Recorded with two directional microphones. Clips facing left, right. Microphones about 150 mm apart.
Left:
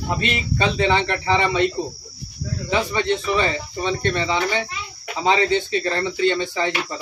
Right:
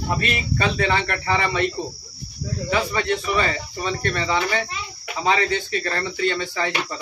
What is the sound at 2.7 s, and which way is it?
Speech, 25° left (ahead or behind).